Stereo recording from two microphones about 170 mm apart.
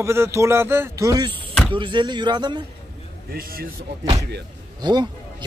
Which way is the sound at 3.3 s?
60° right (ahead or behind).